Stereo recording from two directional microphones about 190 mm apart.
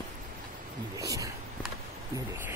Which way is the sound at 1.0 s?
15° right (ahead or behind).